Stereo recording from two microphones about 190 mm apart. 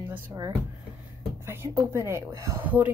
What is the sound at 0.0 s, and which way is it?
Speech, 15° right (ahead or behind).